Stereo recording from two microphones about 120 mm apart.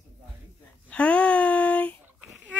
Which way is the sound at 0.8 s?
10° left (ahead or behind).